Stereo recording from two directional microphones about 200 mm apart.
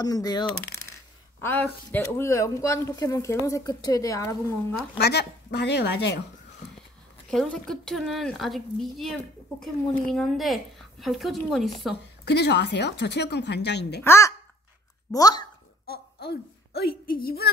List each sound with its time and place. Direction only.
0.0 s speech: 20° left (ahead or behind)
1.4 s speech: 10° left (ahead or behind)
4.9 s a woman's voice: 55° left (ahead or behind)
7.2 s a woman's voice: 5° left (ahead or behind)
12.3 s a woman's voice: 55° left (ahead or behind)
14.0 s speech: 15° left (ahead or behind)
15.9 s a woman's voice: 55° left (ahead or behind)